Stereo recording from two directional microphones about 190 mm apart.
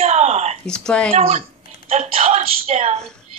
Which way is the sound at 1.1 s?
35° right (ahead or behind).